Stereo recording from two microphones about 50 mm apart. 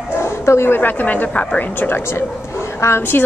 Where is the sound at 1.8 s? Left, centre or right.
Left.